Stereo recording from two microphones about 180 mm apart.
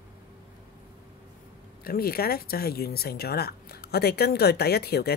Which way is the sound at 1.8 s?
55° left (ahead or behind).